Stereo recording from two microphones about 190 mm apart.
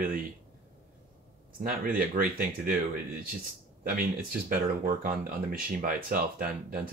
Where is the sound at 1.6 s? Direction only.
50° right (ahead or behind).